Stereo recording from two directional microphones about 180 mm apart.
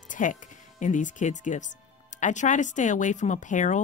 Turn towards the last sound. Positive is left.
turn(degrees=45)  # may be behind; listen again after turning